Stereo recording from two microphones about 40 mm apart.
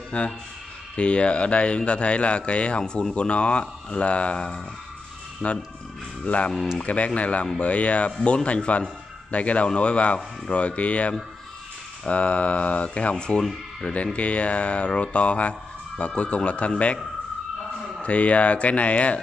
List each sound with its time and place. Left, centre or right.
0.1 s speech: left
2.8 s speech: centre
13.4 s speech: centre
14.1 s speech: left
18.0 s speech: left